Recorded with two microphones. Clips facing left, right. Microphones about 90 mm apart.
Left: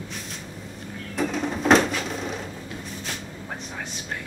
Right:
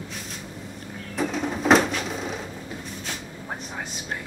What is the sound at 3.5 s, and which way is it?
Vehicle, 15° right (ahead or behind).